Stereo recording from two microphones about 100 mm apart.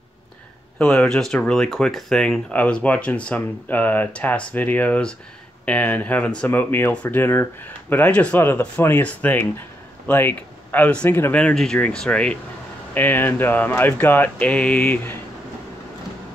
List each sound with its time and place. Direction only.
0.7 s speech: 5° left (ahead or behind); by 11.3 s 25° left (ahead or behind)
11.3 s speech: 10° left (ahead or behind)